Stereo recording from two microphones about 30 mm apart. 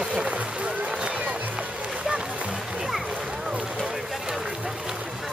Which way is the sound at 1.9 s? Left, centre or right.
Right.